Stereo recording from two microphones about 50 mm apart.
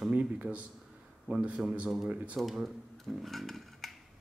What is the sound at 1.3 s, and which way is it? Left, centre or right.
A man's voice, right.